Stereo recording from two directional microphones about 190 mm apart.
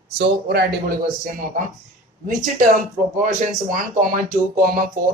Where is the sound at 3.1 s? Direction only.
45° right (ahead or behind).